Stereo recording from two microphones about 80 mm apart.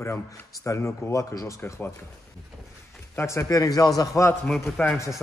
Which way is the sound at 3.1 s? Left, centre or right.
Left.